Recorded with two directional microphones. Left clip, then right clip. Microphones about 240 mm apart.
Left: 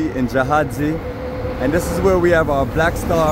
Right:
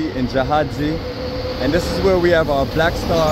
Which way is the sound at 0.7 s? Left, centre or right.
Right.